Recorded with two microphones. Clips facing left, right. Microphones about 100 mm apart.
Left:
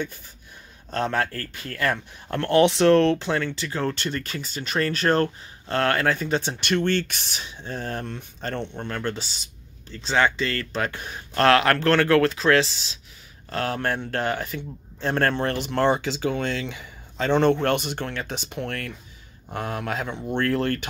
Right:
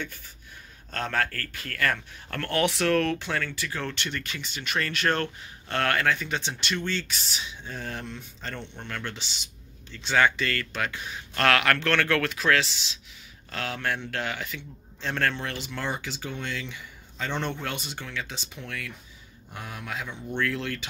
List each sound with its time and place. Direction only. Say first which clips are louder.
0.8 s speech: left 4 dB; 20° left (ahead or behind)
10.9 s a man's voice: left 2 dB; 45° left (ahead or behind)
19.5 s a man's voice: left 8 dB; 75° left (ahead or behind); by 20.8 s 50° left (ahead or behind)